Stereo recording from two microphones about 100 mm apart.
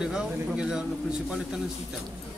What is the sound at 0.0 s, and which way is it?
Speech, 5° right (ahead or behind).